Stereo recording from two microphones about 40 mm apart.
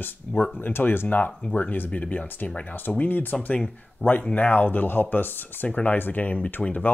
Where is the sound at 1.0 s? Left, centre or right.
Left.